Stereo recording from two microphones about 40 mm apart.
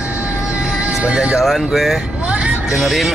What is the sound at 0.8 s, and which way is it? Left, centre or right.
Speech, right.